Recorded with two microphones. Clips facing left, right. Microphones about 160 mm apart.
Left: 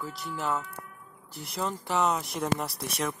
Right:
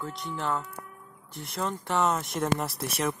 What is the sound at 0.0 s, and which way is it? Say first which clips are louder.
Speech: right 1 dB; 5° left (ahead or behind).